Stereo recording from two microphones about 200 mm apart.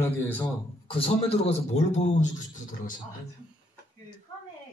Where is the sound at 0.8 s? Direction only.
30° left (ahead or behind).